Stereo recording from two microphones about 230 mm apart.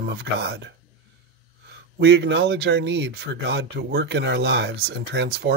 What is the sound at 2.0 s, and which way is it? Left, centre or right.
Speech, right.